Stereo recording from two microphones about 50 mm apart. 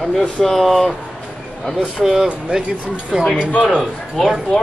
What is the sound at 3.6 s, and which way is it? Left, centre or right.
Speech, centre.